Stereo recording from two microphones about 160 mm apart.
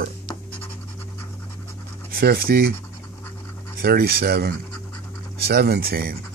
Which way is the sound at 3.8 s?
70° right (ahead or behind).